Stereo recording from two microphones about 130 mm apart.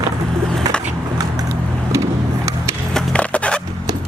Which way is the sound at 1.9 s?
25° right (ahead or behind).